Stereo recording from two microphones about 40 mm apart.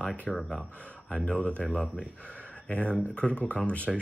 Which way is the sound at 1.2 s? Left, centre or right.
Left.